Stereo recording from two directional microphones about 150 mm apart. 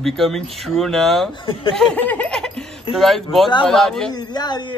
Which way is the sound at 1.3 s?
35° left (ahead or behind).